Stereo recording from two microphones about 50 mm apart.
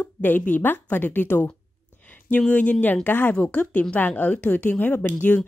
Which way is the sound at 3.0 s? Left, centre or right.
Left.